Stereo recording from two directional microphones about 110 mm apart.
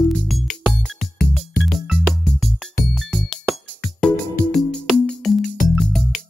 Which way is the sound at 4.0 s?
5° left (ahead or behind).